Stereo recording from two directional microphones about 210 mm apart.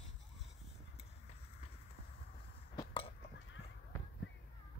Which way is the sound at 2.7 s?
25° left (ahead or behind).